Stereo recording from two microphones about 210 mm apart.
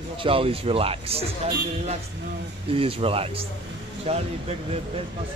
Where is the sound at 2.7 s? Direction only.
25° right (ahead or behind).